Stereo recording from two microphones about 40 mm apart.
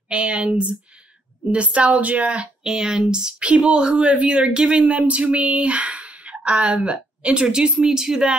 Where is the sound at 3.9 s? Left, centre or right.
Right.